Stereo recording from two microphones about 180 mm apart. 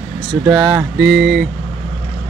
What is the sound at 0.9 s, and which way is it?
Mantra, 75° right (ahead or behind).